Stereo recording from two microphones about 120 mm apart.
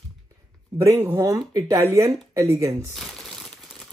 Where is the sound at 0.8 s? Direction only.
25° right (ahead or behind).